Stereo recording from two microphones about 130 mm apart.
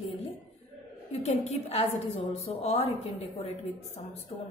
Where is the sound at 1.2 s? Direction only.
55° left (ahead or behind).